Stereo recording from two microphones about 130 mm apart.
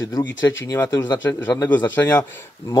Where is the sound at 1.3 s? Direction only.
20° left (ahead or behind).